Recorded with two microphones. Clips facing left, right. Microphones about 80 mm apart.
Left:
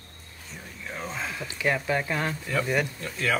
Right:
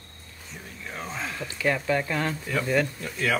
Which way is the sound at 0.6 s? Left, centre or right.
Centre.